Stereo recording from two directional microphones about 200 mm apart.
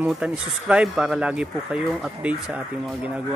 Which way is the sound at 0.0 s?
5° right (ahead or behind).